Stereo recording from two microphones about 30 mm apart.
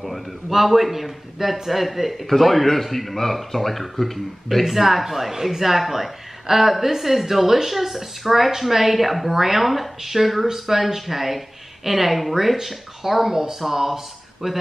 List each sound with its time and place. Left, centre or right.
0.5 s speech: centre
4.6 s speech: centre